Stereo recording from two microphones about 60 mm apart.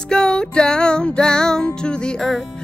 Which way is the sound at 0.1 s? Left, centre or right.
Centre.